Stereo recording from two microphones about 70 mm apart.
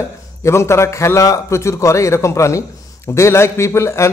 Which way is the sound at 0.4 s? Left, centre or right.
Left.